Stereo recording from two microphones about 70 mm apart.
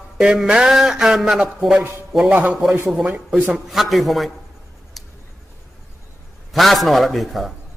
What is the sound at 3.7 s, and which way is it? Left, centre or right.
Speech, centre.